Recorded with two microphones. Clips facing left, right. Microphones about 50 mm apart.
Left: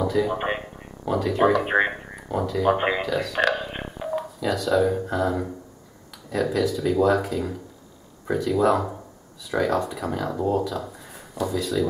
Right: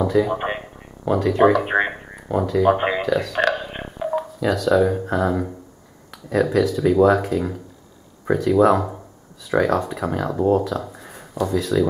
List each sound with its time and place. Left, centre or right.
0.0 s speech: centre
6.5 s speech: centre